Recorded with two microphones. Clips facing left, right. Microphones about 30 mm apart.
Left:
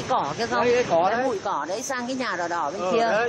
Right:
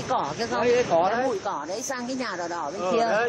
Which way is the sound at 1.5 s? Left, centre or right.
Centre.